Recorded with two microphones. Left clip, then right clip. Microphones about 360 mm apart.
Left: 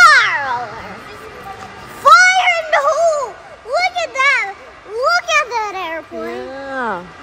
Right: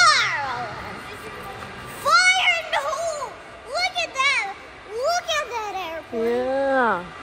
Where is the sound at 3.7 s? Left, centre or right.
Centre.